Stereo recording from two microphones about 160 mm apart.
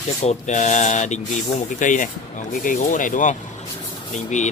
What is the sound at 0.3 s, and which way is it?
Speech, 50° left (ahead or behind).